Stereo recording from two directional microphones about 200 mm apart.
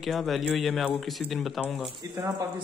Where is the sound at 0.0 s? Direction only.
Centre (ahead or behind).